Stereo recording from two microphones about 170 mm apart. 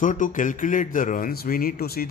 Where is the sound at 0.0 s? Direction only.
50° left (ahead or behind).